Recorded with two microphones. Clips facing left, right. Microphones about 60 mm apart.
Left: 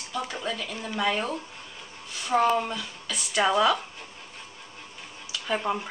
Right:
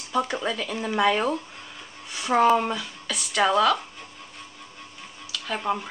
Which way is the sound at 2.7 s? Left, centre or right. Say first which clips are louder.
Right 3 dB; centre.